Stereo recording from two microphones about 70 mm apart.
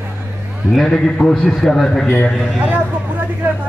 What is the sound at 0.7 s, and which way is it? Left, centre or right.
A man's voice, centre.